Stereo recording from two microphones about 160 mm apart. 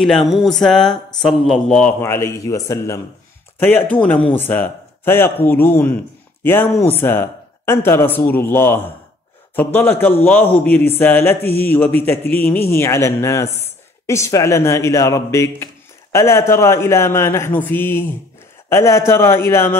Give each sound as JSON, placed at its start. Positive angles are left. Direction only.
{"t": 0.0, "sound": "speech", "side_deg": 0}